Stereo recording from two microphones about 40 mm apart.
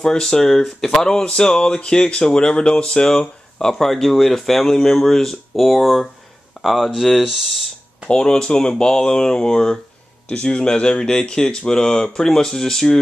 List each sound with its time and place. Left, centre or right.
0.0 s speech: centre
3.7 s speech: centre
8.1 s speech: left